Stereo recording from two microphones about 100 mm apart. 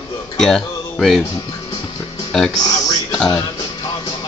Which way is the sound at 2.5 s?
40° left (ahead or behind).